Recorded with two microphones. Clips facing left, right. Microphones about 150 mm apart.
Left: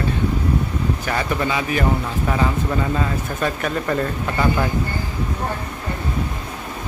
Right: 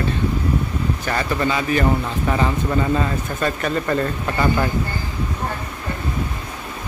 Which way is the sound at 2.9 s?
5° left (ahead or behind).